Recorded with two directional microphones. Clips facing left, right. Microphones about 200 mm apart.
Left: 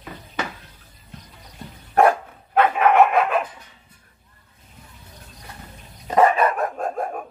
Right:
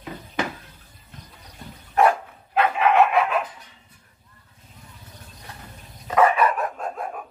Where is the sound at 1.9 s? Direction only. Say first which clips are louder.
Left 2 dB; 50° left (ahead or behind).